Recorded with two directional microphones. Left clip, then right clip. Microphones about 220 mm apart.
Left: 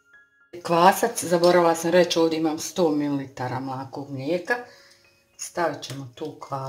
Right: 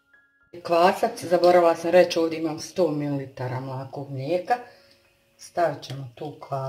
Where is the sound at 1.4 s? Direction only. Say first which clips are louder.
Right 1 dB; 25° left (ahead or behind).